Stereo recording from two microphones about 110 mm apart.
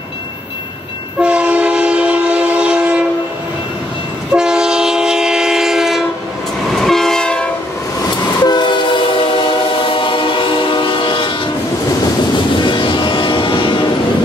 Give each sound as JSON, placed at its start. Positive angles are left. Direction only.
{"t": 1.2, "sound": "train", "side_deg": -10}
{"t": 4.3, "sound": "train", "side_deg": -5}
{"t": 8.5, "sound": "train", "side_deg": 40}
{"t": 12.5, "sound": "vehicle", "side_deg": 45}